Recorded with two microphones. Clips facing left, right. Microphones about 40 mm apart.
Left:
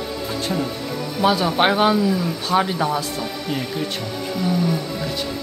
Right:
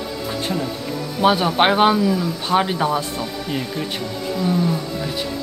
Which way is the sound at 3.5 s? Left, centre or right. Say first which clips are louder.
Even; centre.